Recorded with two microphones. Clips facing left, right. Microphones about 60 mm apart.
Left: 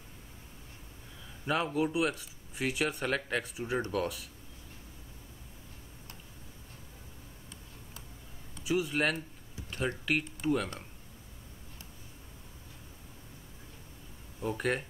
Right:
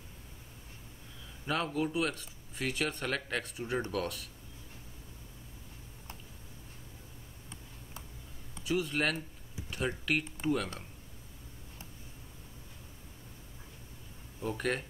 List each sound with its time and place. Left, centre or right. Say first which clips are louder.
1.4 s speech: left 2 dB; centre
8.6 s speech: left 2 dB; centre
14.4 s speech: left 2 dB; centre